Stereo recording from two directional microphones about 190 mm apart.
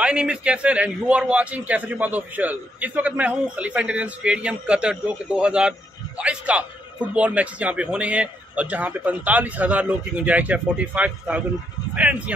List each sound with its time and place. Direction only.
0.0 s a man's voice: 5° right (ahead or behind)